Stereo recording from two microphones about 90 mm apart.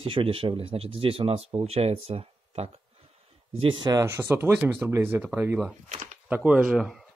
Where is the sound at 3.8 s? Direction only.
35° right (ahead or behind).